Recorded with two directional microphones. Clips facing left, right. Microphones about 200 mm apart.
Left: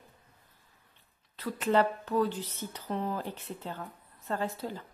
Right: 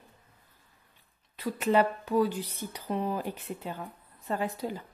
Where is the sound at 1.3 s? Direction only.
15° right (ahead or behind).